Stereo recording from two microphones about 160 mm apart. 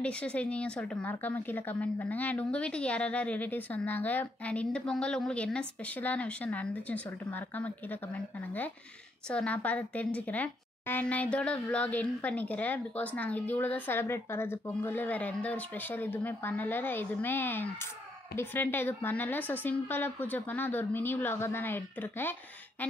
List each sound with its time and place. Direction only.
0.0 s a woman's voice: 5° left (ahead or behind)